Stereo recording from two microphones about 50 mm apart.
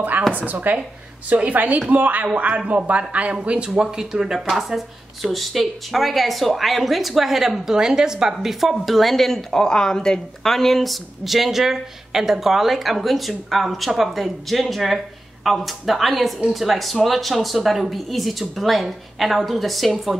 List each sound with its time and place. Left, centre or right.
0.3 s speech: right
4.0 s speech: centre